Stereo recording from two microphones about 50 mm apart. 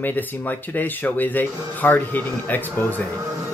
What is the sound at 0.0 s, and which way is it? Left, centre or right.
Speech, left.